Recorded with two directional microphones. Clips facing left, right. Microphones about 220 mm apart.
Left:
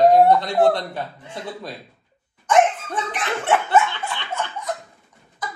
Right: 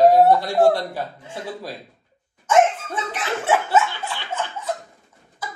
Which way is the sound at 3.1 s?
5° right (ahead or behind).